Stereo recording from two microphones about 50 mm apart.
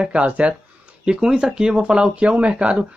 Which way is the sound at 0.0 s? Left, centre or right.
Right.